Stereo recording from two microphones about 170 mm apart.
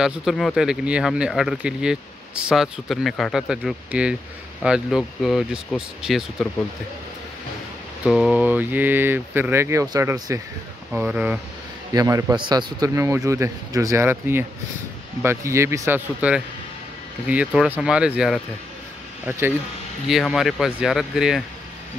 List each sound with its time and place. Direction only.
0.0 s speech: centre (ahead or behind)
8.0 s a man's voice: 5° right (ahead or behind); by 10.4 s 20° right (ahead or behind)
10.9 s a man's voice: 5° right (ahead or behind)
11.9 s a man's voice: 20° right (ahead or behind)
17.6 s speech: 5° right (ahead or behind)
20.1 s speech: centre (ahead or behind)